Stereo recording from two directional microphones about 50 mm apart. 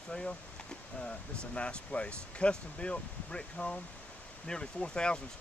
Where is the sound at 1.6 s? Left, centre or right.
Left.